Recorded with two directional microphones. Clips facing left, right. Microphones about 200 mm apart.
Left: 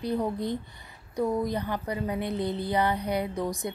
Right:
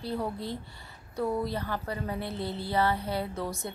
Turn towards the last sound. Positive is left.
turn(degrees=15)  # may be behind; listen again after turning